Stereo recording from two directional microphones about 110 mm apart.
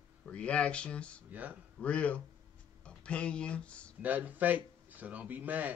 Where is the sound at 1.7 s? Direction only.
10° left (ahead or behind).